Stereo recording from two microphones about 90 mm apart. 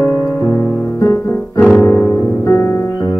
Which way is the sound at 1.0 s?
35° left (ahead or behind).